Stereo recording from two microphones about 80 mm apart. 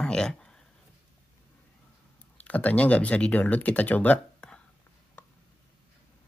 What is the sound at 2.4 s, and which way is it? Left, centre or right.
Speech, left.